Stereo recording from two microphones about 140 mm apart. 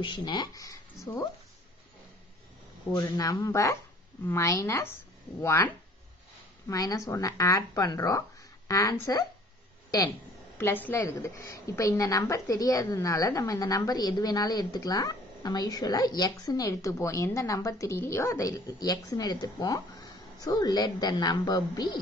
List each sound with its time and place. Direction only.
0.0 s a woman's voice: 30° left (ahead or behind)
3.0 s a woman's voice: 20° left (ahead or behind)
6.7 s a woman's voice: 25° left (ahead or behind)
10.6 s a woman's voice: 15° left (ahead or behind)